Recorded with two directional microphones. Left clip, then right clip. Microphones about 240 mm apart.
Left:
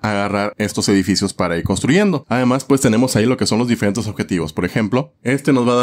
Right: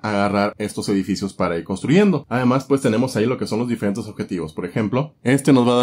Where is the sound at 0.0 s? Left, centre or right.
Left.